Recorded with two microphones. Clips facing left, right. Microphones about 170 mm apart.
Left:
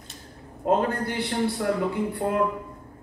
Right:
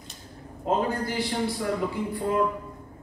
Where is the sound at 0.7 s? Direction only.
60° left (ahead or behind).